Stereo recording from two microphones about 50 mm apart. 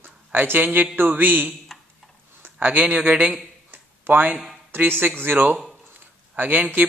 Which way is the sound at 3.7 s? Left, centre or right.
Right.